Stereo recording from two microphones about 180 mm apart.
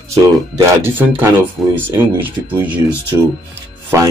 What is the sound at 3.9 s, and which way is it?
Speech, 15° right (ahead or behind).